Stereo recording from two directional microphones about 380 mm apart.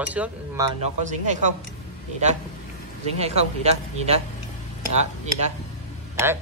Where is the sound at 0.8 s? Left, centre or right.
Centre.